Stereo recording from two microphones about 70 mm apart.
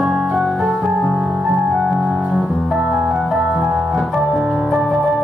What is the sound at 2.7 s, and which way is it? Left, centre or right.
Piano, centre.